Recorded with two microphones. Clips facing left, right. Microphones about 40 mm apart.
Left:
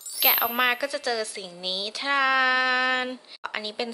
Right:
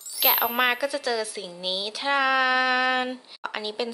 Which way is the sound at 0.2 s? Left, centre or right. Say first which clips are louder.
Right 1 dB; centre.